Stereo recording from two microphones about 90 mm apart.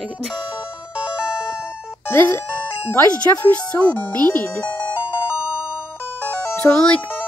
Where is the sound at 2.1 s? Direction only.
35° left (ahead or behind).